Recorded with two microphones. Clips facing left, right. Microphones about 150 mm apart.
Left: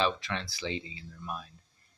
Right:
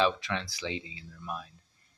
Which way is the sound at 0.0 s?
5° right (ahead or behind).